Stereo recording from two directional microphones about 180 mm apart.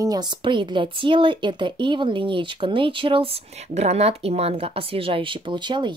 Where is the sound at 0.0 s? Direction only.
20° right (ahead or behind).